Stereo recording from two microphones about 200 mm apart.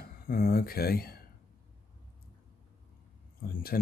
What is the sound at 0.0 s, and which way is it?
Speech, 50° left (ahead or behind).